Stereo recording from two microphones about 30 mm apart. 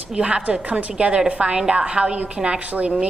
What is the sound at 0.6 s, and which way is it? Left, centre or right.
A woman's voice, right.